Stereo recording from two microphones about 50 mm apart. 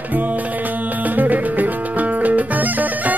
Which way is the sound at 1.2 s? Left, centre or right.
Right.